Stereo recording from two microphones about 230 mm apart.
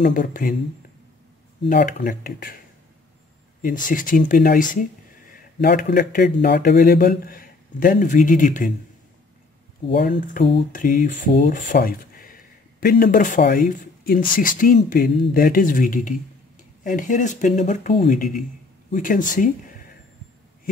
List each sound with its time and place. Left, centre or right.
0.0 s speech: left
1.7 s speech: left
3.6 s speech: left
9.9 s speech: left